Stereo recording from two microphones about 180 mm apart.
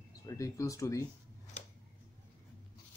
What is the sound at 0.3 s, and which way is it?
Speech, 15° left (ahead or behind).